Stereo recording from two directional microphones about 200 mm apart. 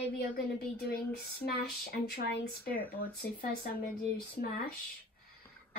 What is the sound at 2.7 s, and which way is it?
Speech, 10° left (ahead or behind).